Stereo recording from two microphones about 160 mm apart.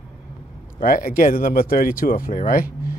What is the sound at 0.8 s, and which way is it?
Speech, 60° left (ahead or behind).